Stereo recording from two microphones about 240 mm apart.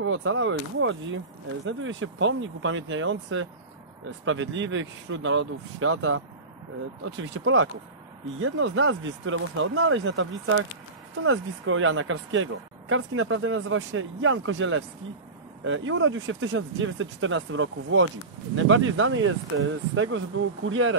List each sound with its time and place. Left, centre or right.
0.0 s speech: right